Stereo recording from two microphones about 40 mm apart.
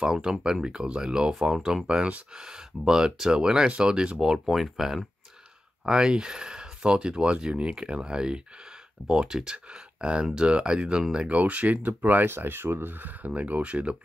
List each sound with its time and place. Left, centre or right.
0.0 s speech: centre
4.2 s speech: centre
5.9 s speech: centre
11.2 s speech: right
12.3 s speech: right
13.3 s speech: right